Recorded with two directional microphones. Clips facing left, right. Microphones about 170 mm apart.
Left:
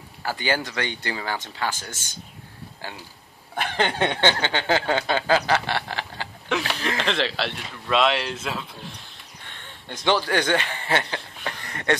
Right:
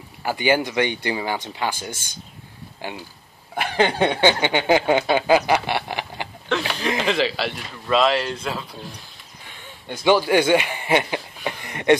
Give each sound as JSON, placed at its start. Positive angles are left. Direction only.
{"t": 0.2, "sound": "speech", "side_deg": -15}
{"t": 7.0, "sound": "speech", "side_deg": -5}
{"t": 9.4, "sound": "chuckle", "side_deg": -5}